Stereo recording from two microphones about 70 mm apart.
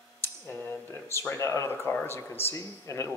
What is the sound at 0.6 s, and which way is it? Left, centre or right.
A man's voice, left.